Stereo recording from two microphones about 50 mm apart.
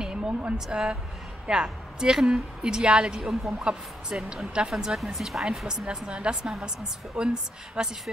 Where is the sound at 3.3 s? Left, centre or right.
Centre.